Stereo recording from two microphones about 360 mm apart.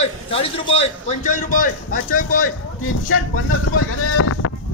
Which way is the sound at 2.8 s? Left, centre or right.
Left.